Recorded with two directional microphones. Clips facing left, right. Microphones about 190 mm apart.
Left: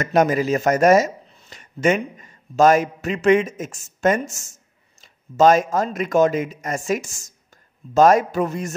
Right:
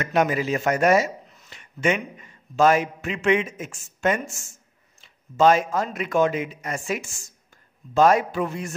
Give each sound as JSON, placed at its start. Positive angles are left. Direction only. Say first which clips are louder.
{"t": 0.0, "sound": "a man's voice", "louder": "left 4 dB", "side_deg": 40}